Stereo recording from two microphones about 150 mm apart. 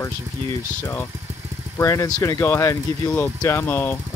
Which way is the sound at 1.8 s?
20° left (ahead or behind).